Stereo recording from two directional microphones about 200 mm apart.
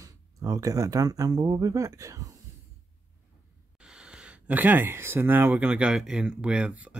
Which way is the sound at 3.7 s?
5° right (ahead or behind).